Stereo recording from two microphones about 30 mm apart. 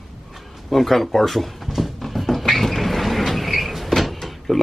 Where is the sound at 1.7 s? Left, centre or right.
Centre.